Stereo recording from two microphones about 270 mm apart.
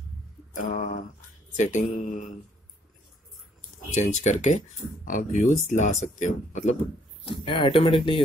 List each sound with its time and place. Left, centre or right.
0.6 s speech: left
3.9 s speech: left